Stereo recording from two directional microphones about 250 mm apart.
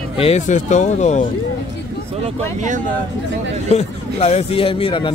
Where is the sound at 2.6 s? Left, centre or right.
Right.